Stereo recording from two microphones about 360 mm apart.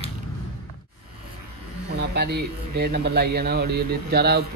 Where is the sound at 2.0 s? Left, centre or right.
Right.